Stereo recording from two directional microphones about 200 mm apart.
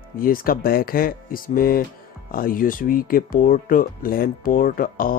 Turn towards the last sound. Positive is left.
turn(degrees=45)  # may be behind; listen again after turning